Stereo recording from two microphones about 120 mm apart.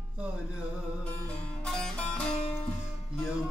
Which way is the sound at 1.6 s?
5° left (ahead or behind).